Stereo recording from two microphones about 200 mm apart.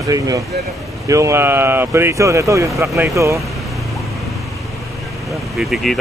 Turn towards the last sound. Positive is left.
turn(degrees=0)  # may be behind; listen again after turning